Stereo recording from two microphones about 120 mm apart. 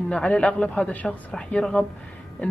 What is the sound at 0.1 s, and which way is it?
A woman's voice, 10° left (ahead or behind).